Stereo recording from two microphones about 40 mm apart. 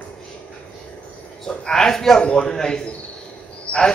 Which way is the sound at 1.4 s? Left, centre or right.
Centre.